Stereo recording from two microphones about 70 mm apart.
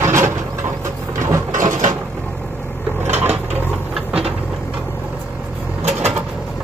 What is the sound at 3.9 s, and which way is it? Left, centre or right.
Vehicle, centre.